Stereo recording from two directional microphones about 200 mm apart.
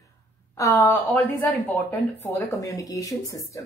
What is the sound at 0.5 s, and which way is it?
A woman's voice, 15° left (ahead or behind).